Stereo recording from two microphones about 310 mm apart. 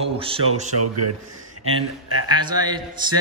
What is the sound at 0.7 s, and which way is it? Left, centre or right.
A man's voice, right.